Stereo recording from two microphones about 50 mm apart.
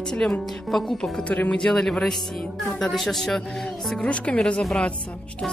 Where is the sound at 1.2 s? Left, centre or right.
Left.